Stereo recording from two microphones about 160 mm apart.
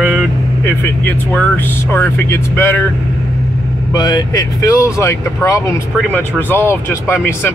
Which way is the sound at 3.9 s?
25° left (ahead or behind).